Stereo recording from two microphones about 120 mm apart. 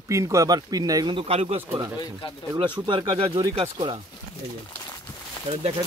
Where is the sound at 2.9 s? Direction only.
35° right (ahead or behind).